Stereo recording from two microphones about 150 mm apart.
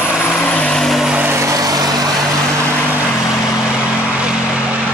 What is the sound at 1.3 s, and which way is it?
Vehicle, 20° right (ahead or behind).